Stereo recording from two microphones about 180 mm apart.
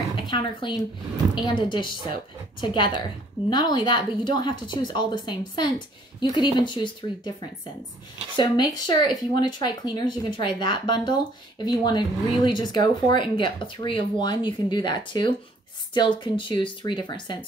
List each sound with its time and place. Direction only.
0.1 s a sound: 25° left (ahead or behind)
1.3 s speech: 25° left (ahead or behind)
8.4 s speech: 25° left (ahead or behind)